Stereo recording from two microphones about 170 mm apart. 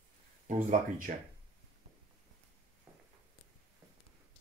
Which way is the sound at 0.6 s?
55° right (ahead or behind).